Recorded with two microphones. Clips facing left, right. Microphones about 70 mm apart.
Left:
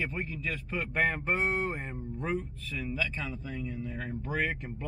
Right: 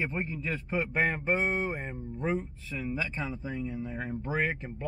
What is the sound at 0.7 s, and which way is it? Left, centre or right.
A man's voice, centre.